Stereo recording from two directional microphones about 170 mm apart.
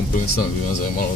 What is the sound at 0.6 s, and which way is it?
Speech, 50° left (ahead or behind).